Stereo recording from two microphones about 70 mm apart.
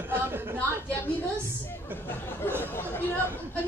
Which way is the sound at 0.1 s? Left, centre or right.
Right.